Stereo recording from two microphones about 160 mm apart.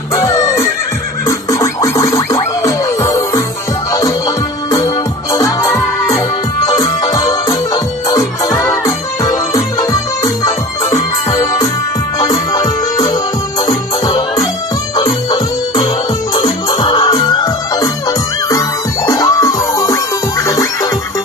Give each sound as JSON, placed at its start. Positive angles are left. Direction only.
{"t": 0.1, "sound": "music", "side_deg": 20}
{"t": 4.6, "sound": "music", "side_deg": 20}
{"t": 11.2, "sound": "music", "side_deg": 20}
{"t": 16.6, "sound": "music", "side_deg": 25}